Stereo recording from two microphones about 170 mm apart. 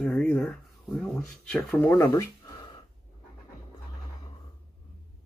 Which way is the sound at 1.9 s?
15° left (ahead or behind).